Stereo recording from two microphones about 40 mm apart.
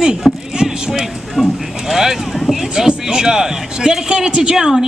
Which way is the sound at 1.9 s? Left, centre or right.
Centre.